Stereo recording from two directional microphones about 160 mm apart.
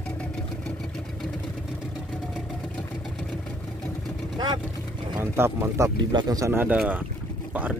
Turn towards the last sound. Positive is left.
turn(degrees=-10)  # may be behind; listen again after turning